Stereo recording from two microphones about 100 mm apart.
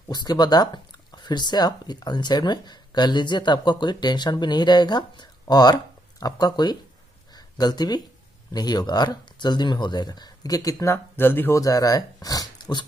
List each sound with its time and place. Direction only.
0.1 s speech: 45° left (ahead or behind); by 11.6 s 20° left (ahead or behind)
11.6 s speech: 35° left (ahead or behind)